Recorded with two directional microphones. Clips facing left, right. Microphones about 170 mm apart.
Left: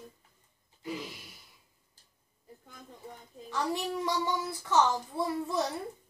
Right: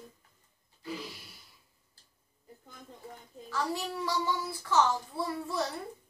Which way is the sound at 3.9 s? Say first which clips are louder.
Left 1 dB; 20° left (ahead or behind).